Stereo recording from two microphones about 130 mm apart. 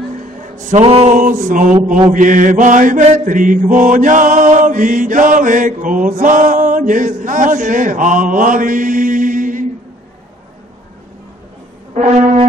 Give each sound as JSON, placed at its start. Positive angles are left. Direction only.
{"t": 0.2, "sound": "music", "side_deg": -80}
{"t": 0.7, "sound": "mantra", "side_deg": -45}
{"t": 1.1, "sound": "mantra", "side_deg": -80}
{"t": 2.0, "sound": "mantra", "side_deg": -90}
{"t": 12.0, "sound": "brass instrument", "side_deg": -75}